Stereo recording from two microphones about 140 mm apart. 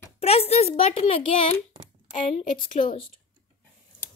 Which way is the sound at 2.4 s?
70° left (ahead or behind).